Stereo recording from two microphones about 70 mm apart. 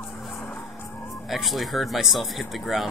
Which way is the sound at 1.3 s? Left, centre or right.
Centre.